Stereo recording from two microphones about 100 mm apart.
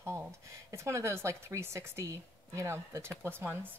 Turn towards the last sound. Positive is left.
turn(degrees=-25)  # may be behind; listen again after turning